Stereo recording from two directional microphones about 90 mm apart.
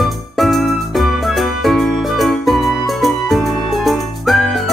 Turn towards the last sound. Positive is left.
turn(degrees=0)  # may be behind; listen again after turning